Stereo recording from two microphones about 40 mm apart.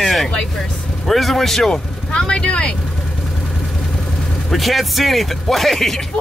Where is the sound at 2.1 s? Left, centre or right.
Left.